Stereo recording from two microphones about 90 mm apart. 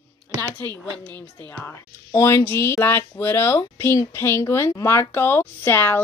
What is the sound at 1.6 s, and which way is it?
A woman's voice, 30° left (ahead or behind).